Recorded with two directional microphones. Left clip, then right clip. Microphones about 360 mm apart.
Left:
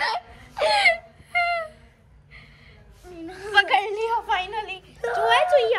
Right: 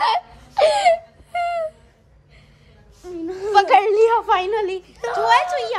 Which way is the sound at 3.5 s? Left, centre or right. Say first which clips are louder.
Right 6 dB; centre.